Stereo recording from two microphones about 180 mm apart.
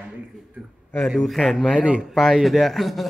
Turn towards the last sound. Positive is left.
turn(degrees=0)  # may be behind; listen again after turning